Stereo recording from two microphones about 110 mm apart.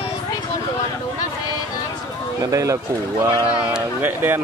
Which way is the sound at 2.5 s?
30° right (ahead or behind).